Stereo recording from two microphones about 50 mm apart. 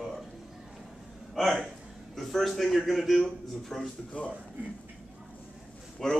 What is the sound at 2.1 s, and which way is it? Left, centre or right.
A man's voice, centre.